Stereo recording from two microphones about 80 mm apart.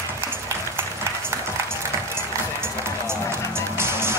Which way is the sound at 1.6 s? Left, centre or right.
Right.